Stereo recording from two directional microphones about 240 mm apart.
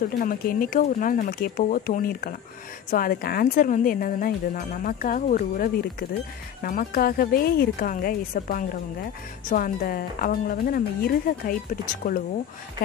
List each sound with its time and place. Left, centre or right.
0.2 s speech: left